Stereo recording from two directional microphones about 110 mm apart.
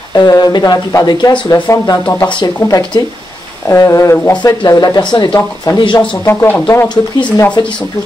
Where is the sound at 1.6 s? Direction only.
30° left (ahead or behind).